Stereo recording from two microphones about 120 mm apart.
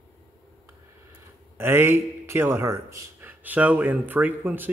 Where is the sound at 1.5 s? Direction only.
20° right (ahead or behind).